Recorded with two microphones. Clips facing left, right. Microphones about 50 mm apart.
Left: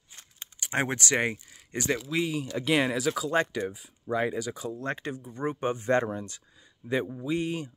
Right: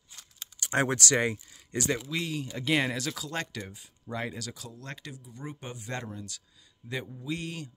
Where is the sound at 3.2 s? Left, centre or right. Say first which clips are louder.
Left 9 dB; centre.